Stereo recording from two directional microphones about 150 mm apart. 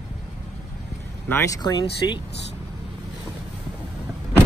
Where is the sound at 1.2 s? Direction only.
15° left (ahead or behind).